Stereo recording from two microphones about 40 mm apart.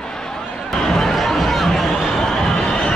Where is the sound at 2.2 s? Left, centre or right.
Centre.